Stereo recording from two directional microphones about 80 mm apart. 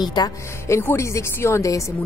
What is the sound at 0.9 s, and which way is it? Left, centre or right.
Speech, left.